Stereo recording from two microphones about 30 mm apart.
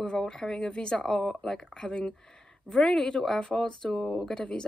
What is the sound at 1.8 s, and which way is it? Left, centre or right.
A woman's voice, left.